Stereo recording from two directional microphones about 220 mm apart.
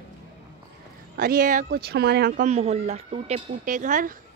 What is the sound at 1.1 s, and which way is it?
Speech, 40° right (ahead or behind).